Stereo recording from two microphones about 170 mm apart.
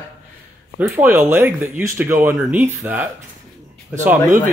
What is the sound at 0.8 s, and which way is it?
Speech, 10° right (ahead or behind).